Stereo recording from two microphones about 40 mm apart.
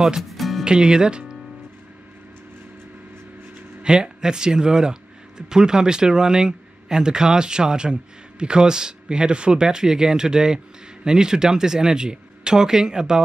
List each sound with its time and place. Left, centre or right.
0.3 s music: centre
0.7 s speech: right
3.8 s speech: centre